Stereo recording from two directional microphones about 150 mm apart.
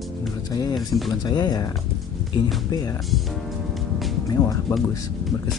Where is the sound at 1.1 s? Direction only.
30° left (ahead or behind).